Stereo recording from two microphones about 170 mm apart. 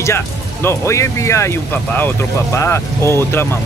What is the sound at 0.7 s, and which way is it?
Speech, 15° left (ahead or behind).